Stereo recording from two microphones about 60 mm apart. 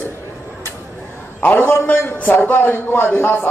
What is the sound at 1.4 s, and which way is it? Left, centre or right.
A man's voice, left.